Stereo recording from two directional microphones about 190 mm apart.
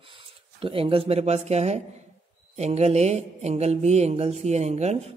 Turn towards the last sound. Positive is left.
turn(degrees=-35)  # may be behind; listen again after turning